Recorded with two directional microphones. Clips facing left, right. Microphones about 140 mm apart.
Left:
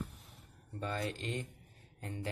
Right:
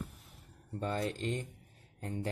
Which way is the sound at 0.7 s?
35° right (ahead or behind).